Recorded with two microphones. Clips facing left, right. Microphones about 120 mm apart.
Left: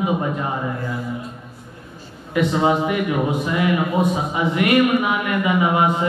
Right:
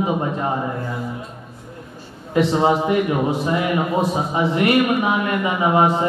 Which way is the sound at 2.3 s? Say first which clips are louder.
Right 1 dB; 30° right (ahead or behind).